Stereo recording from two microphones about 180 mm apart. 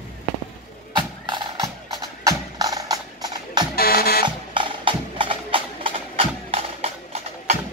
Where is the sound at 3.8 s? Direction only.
60° left (ahead or behind).